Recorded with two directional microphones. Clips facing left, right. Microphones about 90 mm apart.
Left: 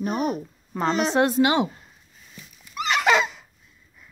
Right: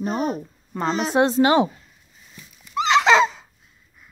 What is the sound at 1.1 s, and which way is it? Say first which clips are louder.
Speech: right 6 dB; 25° right (ahead or behind).